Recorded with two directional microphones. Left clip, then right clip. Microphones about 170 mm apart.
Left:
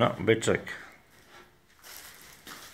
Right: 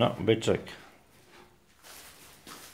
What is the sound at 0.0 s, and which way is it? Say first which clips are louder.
Speech: left 1 dB; centre (ahead or behind).